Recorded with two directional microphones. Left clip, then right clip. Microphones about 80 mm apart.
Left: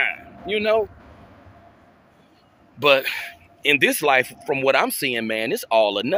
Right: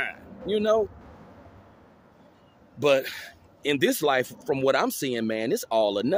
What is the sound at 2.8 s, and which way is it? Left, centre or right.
Speech, right.